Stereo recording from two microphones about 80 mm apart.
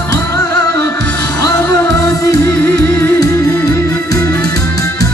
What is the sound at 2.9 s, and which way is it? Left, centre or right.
Music, left.